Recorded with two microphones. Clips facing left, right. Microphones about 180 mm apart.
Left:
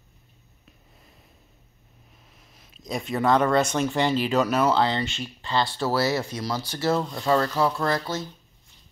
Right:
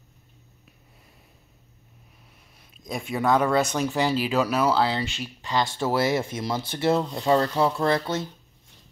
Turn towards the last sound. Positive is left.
turn(degrees=-25)  # may be behind; listen again after turning